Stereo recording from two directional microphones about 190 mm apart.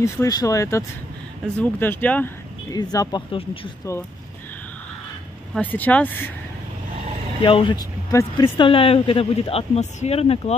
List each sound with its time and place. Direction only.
0.0 s speech: 15° left (ahead or behind)
2.7 s speech: 20° left (ahead or behind)
5.5 s speech: 10° left (ahead or behind)
7.4 s speech: 25° left (ahead or behind)